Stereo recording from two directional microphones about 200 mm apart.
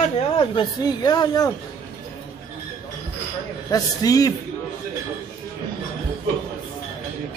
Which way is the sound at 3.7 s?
20° left (ahead or behind).